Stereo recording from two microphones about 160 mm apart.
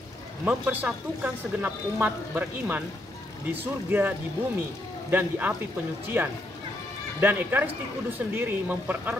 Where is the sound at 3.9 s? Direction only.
15° right (ahead or behind).